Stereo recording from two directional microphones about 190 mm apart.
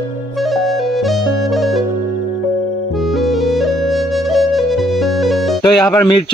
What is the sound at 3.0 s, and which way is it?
Music, centre (ahead or behind).